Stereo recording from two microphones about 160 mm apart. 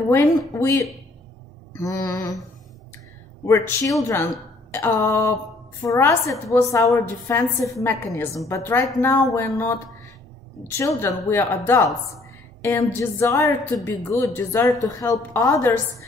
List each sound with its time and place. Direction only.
0.5 s a woman's voice: 20° left (ahead or behind)
3.4 s a woman's voice: 15° left (ahead or behind)